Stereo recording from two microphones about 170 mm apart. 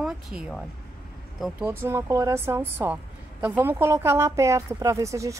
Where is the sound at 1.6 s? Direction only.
15° right (ahead or behind).